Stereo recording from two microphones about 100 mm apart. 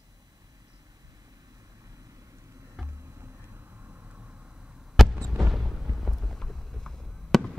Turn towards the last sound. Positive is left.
turn(degrees=5)  # may be behind; listen again after turning